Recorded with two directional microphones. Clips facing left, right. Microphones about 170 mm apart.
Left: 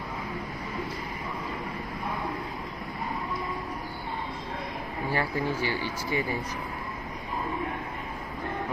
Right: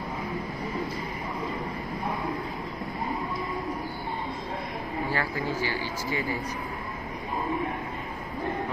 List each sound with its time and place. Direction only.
5.1 s speech: 20° left (ahead or behind)